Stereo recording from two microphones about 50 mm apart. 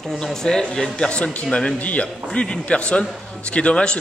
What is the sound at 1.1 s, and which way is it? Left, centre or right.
A man's voice, left.